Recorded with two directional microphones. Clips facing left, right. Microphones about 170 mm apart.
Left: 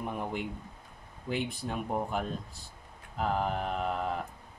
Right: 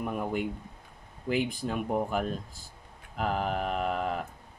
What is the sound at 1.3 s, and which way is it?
Speech, 90° right.